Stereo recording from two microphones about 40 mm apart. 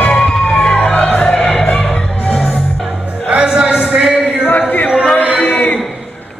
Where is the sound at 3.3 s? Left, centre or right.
Right.